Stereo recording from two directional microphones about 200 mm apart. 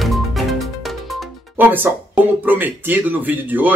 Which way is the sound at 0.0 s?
Centre (ahead or behind).